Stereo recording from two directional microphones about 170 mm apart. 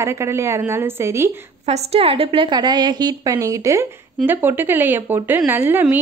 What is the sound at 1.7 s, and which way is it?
A woman's voice, 35° right (ahead or behind).